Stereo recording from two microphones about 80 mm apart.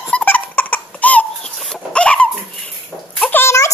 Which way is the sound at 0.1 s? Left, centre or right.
Centre.